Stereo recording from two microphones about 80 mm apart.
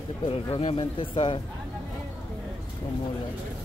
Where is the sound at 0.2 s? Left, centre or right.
Left.